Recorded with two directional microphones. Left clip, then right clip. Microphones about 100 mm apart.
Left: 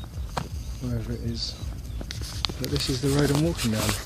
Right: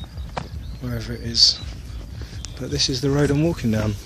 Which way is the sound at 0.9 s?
5° left (ahead or behind).